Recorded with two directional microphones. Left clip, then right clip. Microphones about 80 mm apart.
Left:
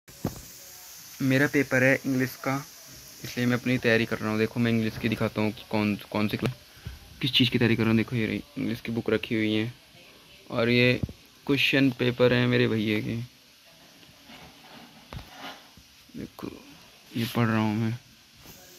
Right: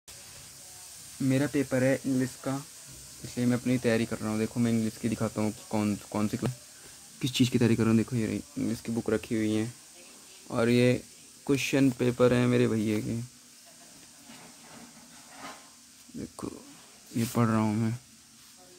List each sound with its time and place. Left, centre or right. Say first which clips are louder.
1.2 s speech: left 5 dB; centre
4.1 s speech: left 5 dB; centre
5.2 s speech: left 3 dB; left
5.5 s speech: left 3 dB; centre
7.2 s speech: left 4 dB; right
7.8 s speech: left 2 dB; centre
8.9 s speech: left 3 dB; centre
10.5 s speech: left 2 dB; right
11.4 s speech: left 3 dB; centre
17.2 s speech: left 1 dB; centre